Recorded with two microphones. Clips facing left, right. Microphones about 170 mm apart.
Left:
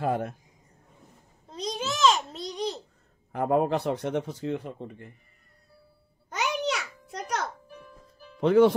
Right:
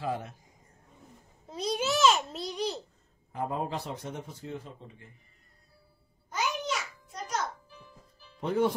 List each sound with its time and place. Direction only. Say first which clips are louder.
0.0 s speech: left 6 dB; 55° left (ahead or behind)
1.5 s babbling: right 2 dB; 5° right (ahead or behind)
3.3 s speech: left 9 dB; 65° left (ahead or behind)
6.3 s a sound: left 3 dB; 75° left (ahead or behind)
8.4 s speech: left 8 dB; 85° left